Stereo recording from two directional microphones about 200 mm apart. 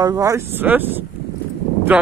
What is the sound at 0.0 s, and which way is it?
Speech, 15° right (ahead or behind).